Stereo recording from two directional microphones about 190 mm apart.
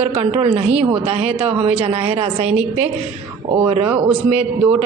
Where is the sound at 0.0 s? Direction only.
35° right (ahead or behind).